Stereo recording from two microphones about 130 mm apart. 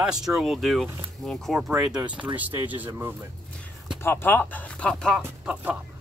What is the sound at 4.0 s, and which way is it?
Speech, 15° left (ahead or behind).